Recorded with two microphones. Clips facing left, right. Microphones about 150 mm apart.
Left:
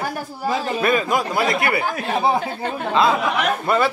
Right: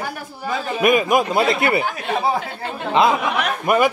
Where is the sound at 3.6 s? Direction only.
15° right (ahead or behind).